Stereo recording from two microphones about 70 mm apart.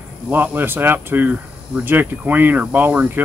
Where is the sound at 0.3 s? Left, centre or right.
Right.